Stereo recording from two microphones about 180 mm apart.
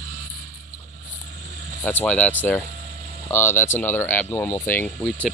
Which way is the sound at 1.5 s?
50° right (ahead or behind).